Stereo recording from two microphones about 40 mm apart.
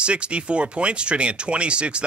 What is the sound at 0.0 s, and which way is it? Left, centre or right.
Speech, right.